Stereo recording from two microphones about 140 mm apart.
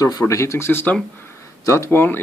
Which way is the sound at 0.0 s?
25° left (ahead or behind).